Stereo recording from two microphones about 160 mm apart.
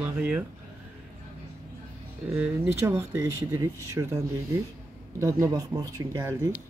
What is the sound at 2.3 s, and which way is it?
Speech, 15° right (ahead or behind).